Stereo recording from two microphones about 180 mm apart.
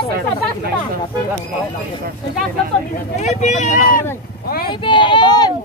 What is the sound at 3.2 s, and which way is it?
Speech, 40° left (ahead or behind).